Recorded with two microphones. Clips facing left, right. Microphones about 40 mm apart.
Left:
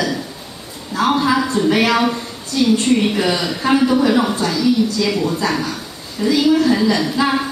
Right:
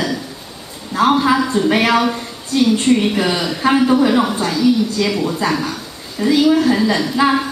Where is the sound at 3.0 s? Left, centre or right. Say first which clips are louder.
Even; centre.